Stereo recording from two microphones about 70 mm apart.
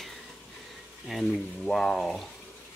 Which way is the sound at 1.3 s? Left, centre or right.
Centre.